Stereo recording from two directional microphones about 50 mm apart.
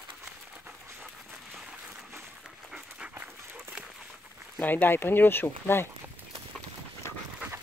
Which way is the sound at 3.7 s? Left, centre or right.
Right.